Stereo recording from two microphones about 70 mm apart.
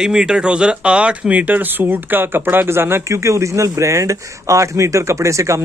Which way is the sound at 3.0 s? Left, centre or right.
Right.